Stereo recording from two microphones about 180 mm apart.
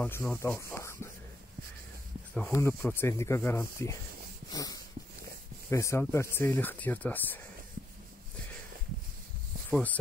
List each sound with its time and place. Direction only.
0.0 s speech: 10° left (ahead or behind)
2.5 s speech: 15° left (ahead or behind)
4.5 s a sound: 20° left (ahead or behind)
5.7 s speech: 15° left (ahead or behind)
9.7 s speech: 10° left (ahead or behind)